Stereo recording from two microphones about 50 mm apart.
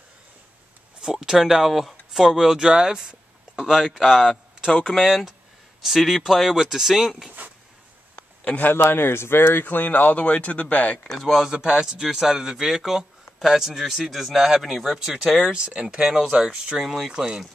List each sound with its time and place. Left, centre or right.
1.0 s speech: centre
8.5 s speech: left
11.1 s speech: centre
11.4 s speech: centre
15.5 s speech: right